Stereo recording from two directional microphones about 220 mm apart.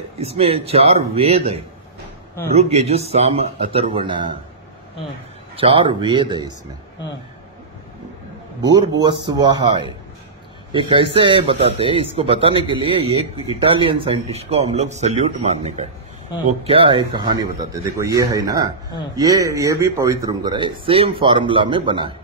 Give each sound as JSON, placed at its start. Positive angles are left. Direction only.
{"t": 0.2, "sound": "speech", "side_deg": -25}
{"t": 5.6, "sound": "speech", "side_deg": -25}
{"t": 8.6, "sound": "speech", "side_deg": -20}